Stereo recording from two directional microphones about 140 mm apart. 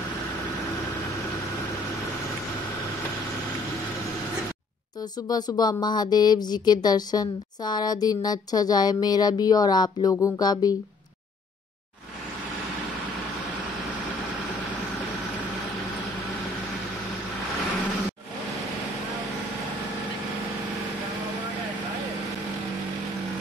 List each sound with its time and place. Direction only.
5.3 s speech: 30° left (ahead or behind)